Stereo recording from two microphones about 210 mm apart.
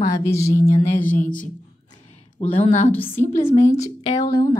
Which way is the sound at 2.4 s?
30° left (ahead or behind).